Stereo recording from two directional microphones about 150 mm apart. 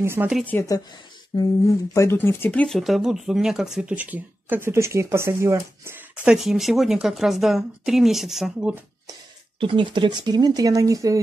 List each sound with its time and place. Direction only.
0.0 s speech: 15° right (ahead or behind)
0.5 s speech: 15° left (ahead or behind)
1.3 s a sound: 25° left (ahead or behind)
2.0 s speech: 15° left (ahead or behind); by 5.9 s 20° right (ahead or behind)
6.2 s speech: 5° right (ahead or behind)
9.6 s speech: 35° right (ahead or behind)